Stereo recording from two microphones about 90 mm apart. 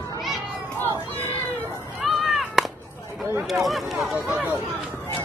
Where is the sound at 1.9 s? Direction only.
Centre (ahead or behind).